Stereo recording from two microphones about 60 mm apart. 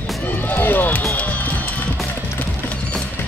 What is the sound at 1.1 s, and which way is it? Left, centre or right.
Music, left.